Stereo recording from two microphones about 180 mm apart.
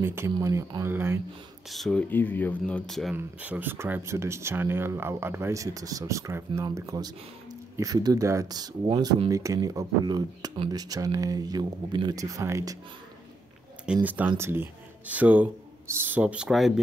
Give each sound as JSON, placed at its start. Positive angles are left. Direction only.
{"t": 0.0, "sound": "speech", "side_deg": -15}
{"t": 1.7, "sound": "speech", "side_deg": 0}
{"t": 14.0, "sound": "speech", "side_deg": -10}